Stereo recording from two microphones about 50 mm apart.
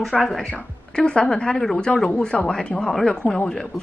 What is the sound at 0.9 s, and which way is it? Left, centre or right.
A woman's voice, centre.